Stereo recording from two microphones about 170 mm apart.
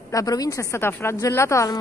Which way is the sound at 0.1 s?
20° left (ahead or behind).